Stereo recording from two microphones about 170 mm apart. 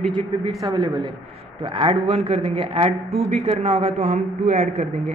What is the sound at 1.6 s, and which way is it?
A man's voice, 30° right (ahead or behind).